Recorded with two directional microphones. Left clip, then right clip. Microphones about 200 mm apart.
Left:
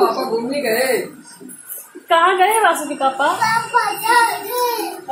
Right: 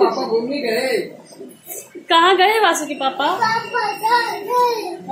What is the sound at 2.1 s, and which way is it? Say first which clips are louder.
Speech: even; 35° right (ahead or behind).